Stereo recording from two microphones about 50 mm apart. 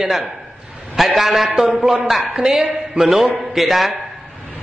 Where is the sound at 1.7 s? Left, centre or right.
Centre.